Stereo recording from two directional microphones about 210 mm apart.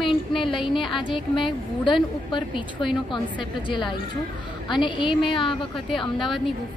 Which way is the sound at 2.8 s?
Centre (ahead or behind).